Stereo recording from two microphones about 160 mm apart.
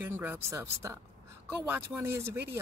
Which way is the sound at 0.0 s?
15° right (ahead or behind).